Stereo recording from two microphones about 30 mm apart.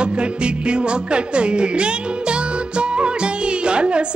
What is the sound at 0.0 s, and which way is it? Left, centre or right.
Music, right.